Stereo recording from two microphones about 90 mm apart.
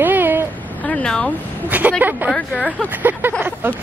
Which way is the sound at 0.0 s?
20° right (ahead or behind).